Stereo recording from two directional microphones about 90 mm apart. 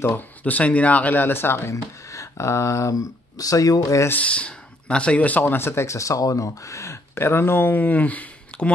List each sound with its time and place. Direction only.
0.0 s speech: 20° left (ahead or behind); by 4.1 s 40° left (ahead or behind)
4.1 s speech: 15° left (ahead or behind)